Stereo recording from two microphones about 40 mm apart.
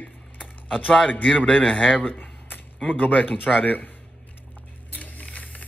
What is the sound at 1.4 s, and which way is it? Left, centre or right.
Speech, left.